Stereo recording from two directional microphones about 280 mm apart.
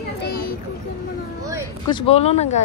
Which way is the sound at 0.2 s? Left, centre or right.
Left.